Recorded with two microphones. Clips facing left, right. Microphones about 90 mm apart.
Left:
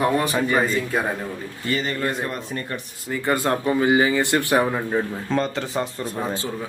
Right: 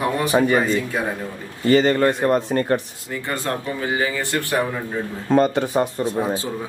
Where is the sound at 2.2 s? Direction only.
45° right (ahead or behind).